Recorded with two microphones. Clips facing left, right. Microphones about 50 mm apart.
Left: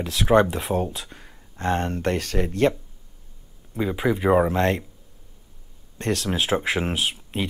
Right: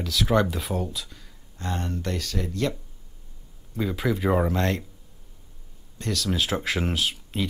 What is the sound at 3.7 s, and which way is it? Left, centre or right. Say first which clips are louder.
Speech: left 3 dB; left.